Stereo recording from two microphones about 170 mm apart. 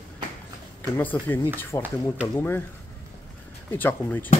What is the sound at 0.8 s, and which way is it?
Speech, 10° left (ahead or behind).